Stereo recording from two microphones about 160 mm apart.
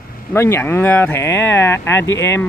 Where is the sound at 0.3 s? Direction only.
15° left (ahead or behind).